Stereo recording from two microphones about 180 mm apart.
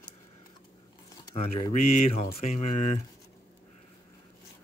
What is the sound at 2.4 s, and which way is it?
Speech, 40° left (ahead or behind).